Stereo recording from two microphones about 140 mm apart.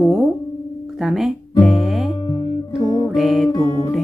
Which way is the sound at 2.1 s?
40° left (ahead or behind).